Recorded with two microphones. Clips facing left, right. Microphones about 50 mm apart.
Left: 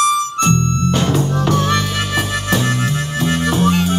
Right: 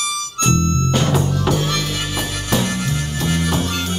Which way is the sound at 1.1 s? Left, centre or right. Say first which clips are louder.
Left 2 dB; centre.